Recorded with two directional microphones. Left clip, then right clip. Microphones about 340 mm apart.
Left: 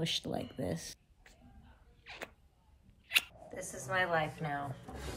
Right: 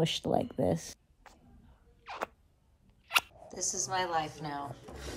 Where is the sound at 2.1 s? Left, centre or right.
Centre.